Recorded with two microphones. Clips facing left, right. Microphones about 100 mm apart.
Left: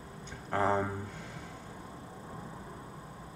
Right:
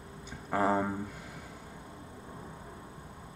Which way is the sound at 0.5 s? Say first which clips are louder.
Right 1 dB; 5° right (ahead or behind).